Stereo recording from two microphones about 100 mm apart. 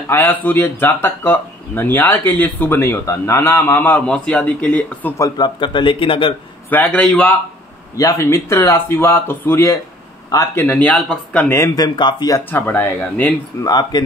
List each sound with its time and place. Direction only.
0.1 s speech: 20° left (ahead or behind)
5.4 s a man's voice: 55° left (ahead or behind)
6.9 s a man's voice: 5° left (ahead or behind)
7.9 s a man's voice: 35° left (ahead or behind); by 11.5 s 15° left (ahead or behind)
11.7 s speech: 45° left (ahead or behind)
12.4 s speech: 20° left (ahead or behind)
13.6 s speech: 40° left (ahead or behind)